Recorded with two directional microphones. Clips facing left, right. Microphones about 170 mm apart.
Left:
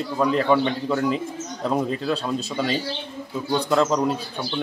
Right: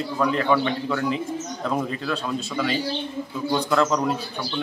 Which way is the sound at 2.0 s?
35° left (ahead or behind).